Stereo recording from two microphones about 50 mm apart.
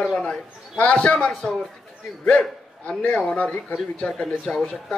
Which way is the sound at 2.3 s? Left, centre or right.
Left.